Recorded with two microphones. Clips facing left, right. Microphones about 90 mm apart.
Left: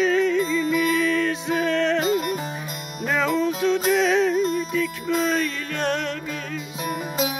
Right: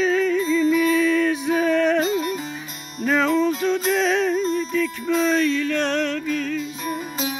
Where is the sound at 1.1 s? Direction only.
10° right (ahead or behind).